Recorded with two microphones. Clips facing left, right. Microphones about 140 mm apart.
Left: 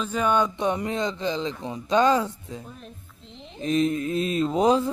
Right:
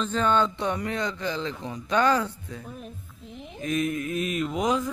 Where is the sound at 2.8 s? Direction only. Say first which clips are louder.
Right 3 dB; 10° right (ahead or behind).